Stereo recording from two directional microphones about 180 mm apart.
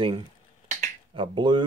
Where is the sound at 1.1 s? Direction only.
30° right (ahead or behind).